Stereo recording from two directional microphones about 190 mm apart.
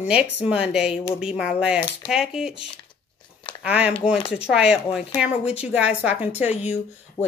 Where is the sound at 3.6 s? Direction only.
5° right (ahead or behind).